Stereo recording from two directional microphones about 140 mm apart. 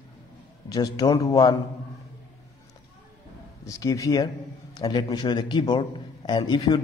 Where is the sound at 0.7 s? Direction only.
25° left (ahead or behind).